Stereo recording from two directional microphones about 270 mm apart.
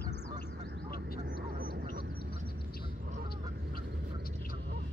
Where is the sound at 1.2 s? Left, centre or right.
Right.